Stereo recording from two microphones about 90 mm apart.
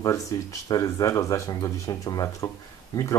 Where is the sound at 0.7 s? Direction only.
40° left (ahead or behind).